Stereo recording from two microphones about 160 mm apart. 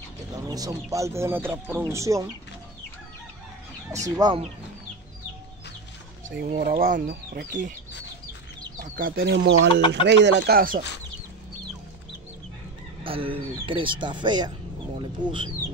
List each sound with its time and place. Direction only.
0.5 s speech: 20° right (ahead or behind)
4.0 s speech: 25° right (ahead or behind)
6.3 s speech: 65° right (ahead or behind)
8.8 s speech: 60° right (ahead or behind)
13.0 s speech: 35° right (ahead or behind)